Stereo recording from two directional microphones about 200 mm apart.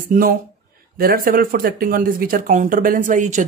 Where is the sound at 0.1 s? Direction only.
45° right (ahead or behind).